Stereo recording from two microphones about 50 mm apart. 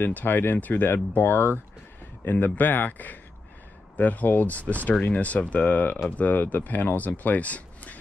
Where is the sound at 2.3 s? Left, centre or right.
Left.